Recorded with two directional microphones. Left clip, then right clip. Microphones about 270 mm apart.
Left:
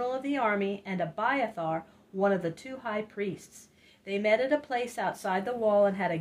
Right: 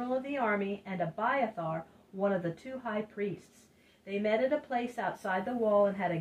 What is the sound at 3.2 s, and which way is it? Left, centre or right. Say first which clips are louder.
Speech: left 2 dB; left.